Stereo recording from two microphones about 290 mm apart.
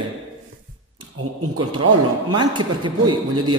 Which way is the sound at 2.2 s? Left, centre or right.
Centre.